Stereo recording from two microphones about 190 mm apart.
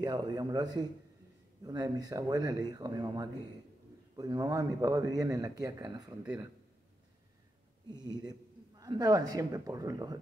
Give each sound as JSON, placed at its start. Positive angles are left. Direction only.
{"t": 0.0, "sound": "speech", "side_deg": -20}
{"t": 6.2, "sound": "speech", "side_deg": -5}
{"t": 7.9, "sound": "speech", "side_deg": -20}